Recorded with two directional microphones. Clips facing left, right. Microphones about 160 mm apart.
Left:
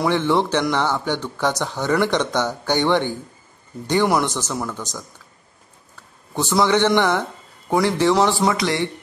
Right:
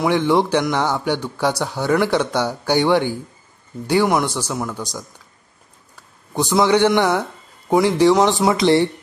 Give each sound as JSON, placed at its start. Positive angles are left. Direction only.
{"t": 0.0, "sound": "speech", "side_deg": -15}
{"t": 6.3, "sound": "speech", "side_deg": -15}